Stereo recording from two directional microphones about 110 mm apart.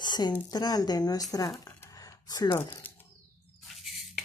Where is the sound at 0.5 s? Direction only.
35° left (ahead or behind).